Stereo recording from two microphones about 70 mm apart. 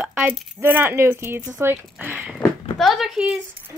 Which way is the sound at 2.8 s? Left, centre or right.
Centre.